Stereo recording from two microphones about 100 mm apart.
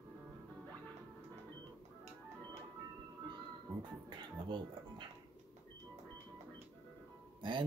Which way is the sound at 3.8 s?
55° right (ahead or behind).